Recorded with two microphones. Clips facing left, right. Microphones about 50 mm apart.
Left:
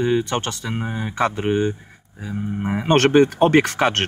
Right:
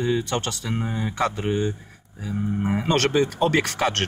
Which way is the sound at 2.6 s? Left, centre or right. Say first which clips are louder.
Left 1 dB; left.